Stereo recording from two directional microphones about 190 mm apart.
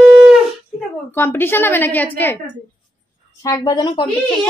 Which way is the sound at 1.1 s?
10° left (ahead or behind).